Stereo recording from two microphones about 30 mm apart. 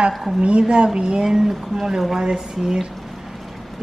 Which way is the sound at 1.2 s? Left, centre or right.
Centre.